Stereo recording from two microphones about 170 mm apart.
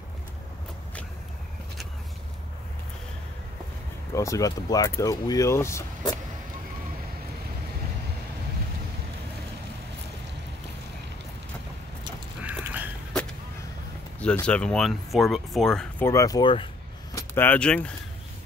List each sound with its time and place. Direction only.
4.1 s speech: 20° left (ahead or behind)
12.4 s a sound: 10° right (ahead or behind)
14.2 s speech: 5° left (ahead or behind)
16.1 s speech: 20° left (ahead or behind)
17.1 s speech: 15° left (ahead or behind)